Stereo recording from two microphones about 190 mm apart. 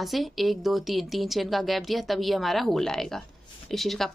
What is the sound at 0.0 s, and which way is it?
A woman's voice, centre (ahead or behind).